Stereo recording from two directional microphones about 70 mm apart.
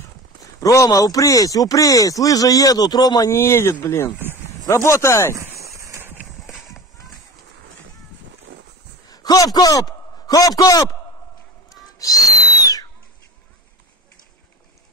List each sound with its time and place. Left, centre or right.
0.4 s speech: left
3.3 s speech: left
5.3 s a sound: right
5.9 s clip-clop: right
6.4 s clip-clop: centre
9.1 s a man's voice: left
11.7 s owl: left